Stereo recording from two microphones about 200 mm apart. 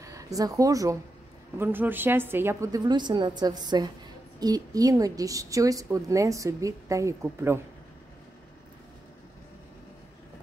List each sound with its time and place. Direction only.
0.0 s a woman's voice: 15° right (ahead or behind)